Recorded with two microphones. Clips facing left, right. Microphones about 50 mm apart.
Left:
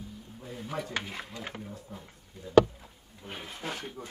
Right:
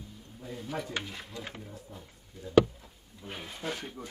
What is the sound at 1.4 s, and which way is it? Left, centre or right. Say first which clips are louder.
Speech: left 2 dB; left.